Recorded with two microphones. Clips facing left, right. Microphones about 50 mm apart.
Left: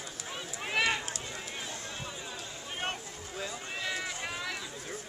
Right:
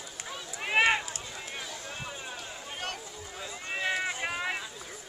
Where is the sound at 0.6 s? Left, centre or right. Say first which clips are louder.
Right 5 dB; right.